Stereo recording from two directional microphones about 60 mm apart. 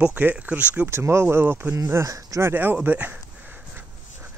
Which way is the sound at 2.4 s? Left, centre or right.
Right.